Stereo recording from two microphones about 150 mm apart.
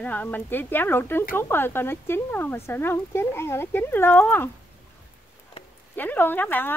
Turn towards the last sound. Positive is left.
turn(degrees=15)  # may be behind; listen again after turning